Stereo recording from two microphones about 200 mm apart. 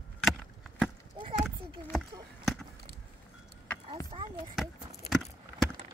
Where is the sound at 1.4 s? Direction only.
Centre (ahead or behind).